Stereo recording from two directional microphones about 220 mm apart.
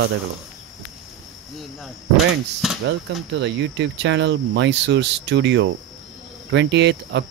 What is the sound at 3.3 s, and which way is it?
Cricket, 55° right (ahead or behind).